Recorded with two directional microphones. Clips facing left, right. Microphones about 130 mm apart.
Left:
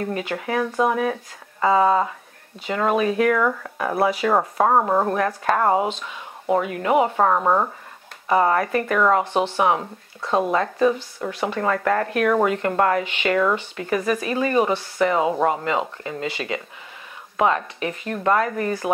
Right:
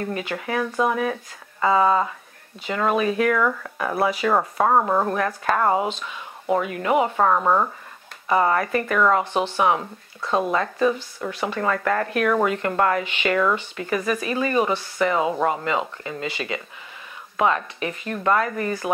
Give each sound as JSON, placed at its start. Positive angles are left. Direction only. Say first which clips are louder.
{"t": 0.0, "sound": "speech", "louder": "left 2 dB", "side_deg": 40}
{"t": 7.1, "sound": "speech", "louder": "left 1 dB", "side_deg": 25}